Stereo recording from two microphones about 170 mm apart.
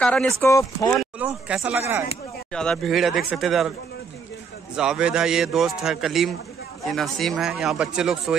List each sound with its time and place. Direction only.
0.0 s speech: 5° left (ahead or behind)
0.5 s speech: 20° left (ahead or behind)
0.9 s speech: 5° right (ahead or behind)
2.5 s speech: 5° left (ahead or behind)
4.7 s speech: 5° right (ahead or behind)